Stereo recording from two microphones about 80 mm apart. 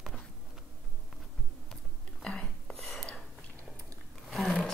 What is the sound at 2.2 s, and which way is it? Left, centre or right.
Whispering, centre.